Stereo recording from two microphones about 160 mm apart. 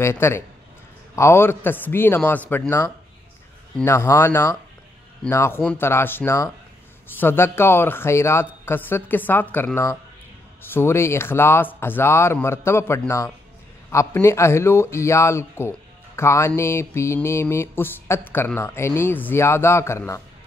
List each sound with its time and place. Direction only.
0.0 s mantra: 15° left (ahead or behind)
3.8 s mantra: 15° left (ahead or behind)